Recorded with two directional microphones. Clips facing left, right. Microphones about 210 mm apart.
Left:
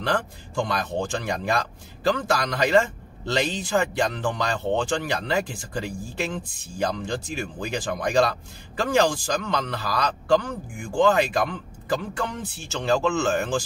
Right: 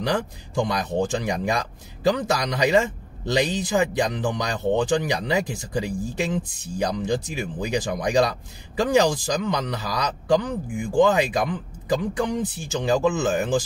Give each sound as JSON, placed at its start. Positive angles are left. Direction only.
{"t": 0.0, "sound": "speech", "side_deg": -15}